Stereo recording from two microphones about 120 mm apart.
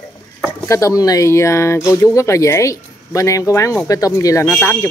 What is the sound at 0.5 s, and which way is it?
Speech, 25° left (ahead or behind).